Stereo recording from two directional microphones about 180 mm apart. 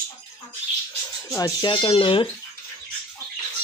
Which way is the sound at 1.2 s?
20° left (ahead or behind).